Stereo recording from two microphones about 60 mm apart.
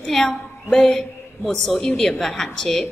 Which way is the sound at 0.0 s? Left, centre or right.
Centre.